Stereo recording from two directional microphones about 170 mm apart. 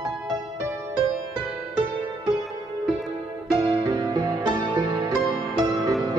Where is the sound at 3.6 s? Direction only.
25° right (ahead or behind).